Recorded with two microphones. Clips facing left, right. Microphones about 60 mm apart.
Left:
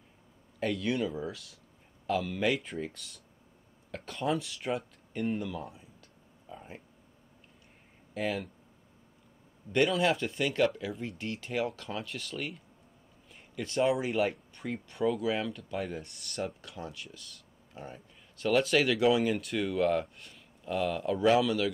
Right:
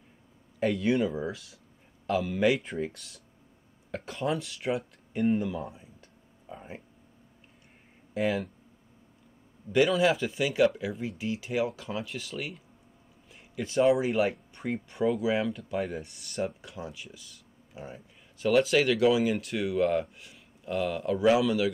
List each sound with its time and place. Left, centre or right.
0.6 s speech: centre
5.5 s speech: centre
6.5 s a sound: centre
8.1 s speech: centre
9.7 s speech: centre